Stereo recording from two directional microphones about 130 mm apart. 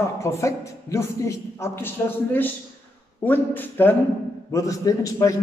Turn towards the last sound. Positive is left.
turn(degrees=25)  # may be behind; listen again after turning